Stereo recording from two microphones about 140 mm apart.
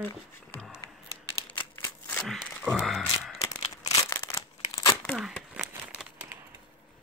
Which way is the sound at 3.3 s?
25° left (ahead or behind).